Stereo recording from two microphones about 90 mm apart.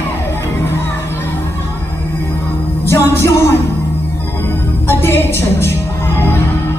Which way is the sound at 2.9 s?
25° left (ahead or behind).